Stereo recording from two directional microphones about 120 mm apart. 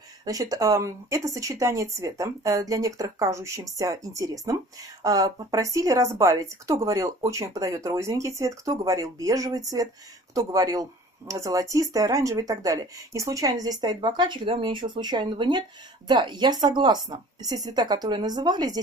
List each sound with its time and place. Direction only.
0.2 s a woman's voice: 30° right (ahead or behind)